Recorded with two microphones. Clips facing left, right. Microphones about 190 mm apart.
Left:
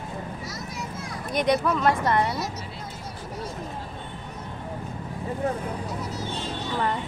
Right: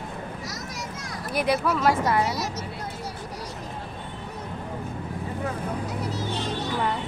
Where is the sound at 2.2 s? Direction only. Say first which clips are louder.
Even; 90° right.